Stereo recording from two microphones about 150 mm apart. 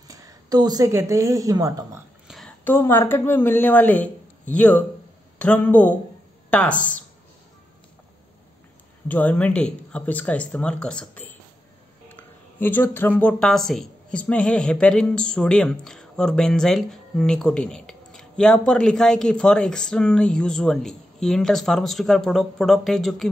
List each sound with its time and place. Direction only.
0.1 s a woman's voice: 25° right (ahead or behind)
2.2 s a sound: centre (ahead or behind)
2.6 s a woman's voice: 15° left (ahead or behind)
9.0 s a woman's voice: 10° left (ahead or behind)